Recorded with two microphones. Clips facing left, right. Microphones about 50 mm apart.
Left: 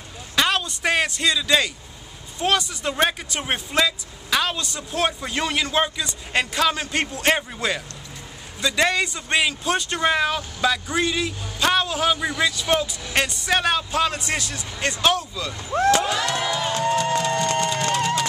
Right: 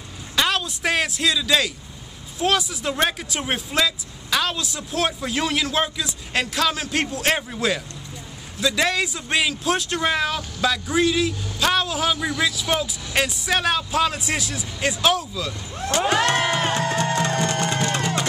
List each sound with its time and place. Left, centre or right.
0.4 s a man's voice: centre
15.7 s speech: left
16.1 s music: right
17.6 s music: right